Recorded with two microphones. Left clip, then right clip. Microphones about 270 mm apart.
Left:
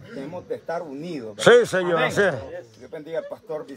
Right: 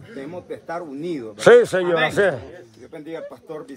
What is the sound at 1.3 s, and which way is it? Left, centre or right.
A man's voice, centre.